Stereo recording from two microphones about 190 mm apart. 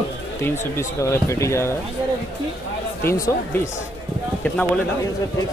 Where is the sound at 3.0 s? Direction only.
15° left (ahead or behind).